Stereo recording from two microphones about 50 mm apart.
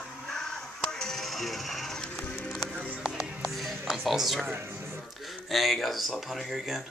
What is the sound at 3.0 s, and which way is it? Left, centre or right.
Music, centre.